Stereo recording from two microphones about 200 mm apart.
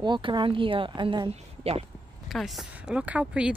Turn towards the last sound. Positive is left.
turn(degrees=-5)  # may be behind; listen again after turning